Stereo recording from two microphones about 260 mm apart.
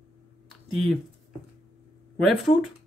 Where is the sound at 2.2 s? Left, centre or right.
Centre.